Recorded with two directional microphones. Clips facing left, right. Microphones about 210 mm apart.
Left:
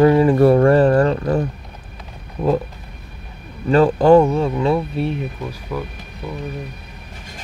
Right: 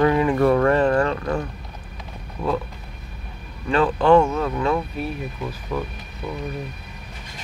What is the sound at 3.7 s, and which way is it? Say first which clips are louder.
Speech: left 5 dB; 40° left (ahead or behind).